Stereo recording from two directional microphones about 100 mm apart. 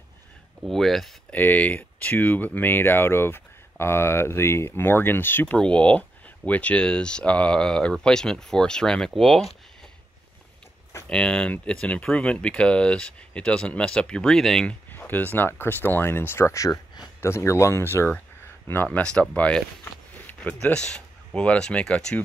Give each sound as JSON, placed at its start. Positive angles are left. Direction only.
{"t": 0.7, "sound": "speech", "side_deg": 0}
{"t": 1.3, "sound": "speech", "side_deg": 15}
{"t": 11.1, "sound": "speech", "side_deg": 10}
{"t": 14.9, "sound": "speech", "side_deg": 20}
{"t": 17.2, "sound": "speech", "side_deg": 25}
{"t": 18.9, "sound": "speech", "side_deg": 10}